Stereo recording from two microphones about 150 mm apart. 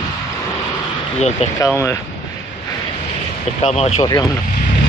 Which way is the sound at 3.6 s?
45° left (ahead or behind).